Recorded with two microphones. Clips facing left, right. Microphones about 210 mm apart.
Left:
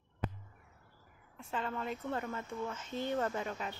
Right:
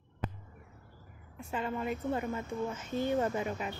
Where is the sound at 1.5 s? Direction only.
10° right (ahead or behind).